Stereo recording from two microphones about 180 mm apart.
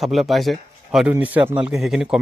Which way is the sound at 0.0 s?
Centre (ahead or behind).